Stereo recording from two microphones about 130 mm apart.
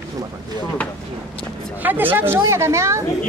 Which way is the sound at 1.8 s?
15° right (ahead or behind).